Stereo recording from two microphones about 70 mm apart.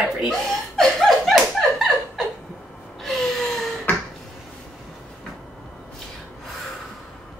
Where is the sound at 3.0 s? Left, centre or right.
Centre.